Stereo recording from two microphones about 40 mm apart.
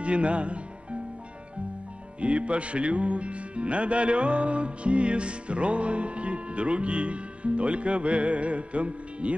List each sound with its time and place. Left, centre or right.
0.0 s music: right
2.1 s music: right